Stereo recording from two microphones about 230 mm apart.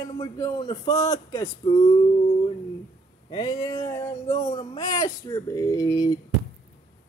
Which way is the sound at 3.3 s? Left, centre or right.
Centre.